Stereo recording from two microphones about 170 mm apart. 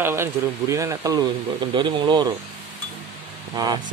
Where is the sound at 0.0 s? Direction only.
15° right (ahead or behind).